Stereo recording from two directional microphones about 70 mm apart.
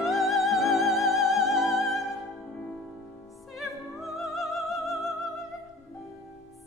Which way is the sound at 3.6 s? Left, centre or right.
Centre.